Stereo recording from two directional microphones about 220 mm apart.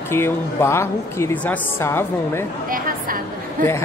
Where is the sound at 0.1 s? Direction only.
10° left (ahead or behind).